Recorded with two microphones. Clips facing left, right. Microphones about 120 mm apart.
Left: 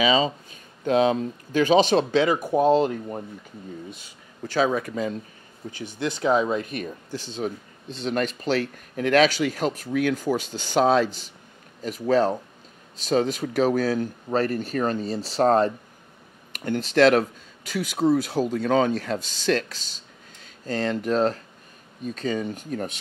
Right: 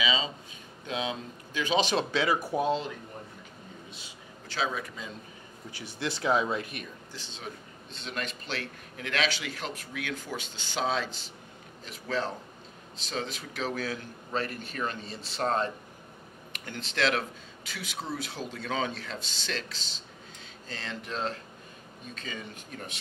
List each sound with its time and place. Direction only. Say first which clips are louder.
0.0 s speech: left 10 dB; 50° left (ahead or behind)
2.1 s speech: left 7 dB; 20° left (ahead or behind)
2.5 s speech: left 9 dB; 45° left (ahead or behind)
4.5 s speech: left 10 dB; 45° left (ahead or behind)
5.9 s speech: left 6 dB; 20° left (ahead or behind)
6.6 s speech: left 9 dB; 45° left (ahead or behind)